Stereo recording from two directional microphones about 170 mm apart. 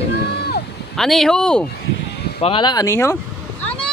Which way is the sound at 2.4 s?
30° left (ahead or behind).